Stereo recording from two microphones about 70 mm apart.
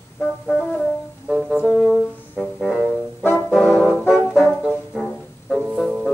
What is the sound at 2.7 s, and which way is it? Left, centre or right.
Music, left.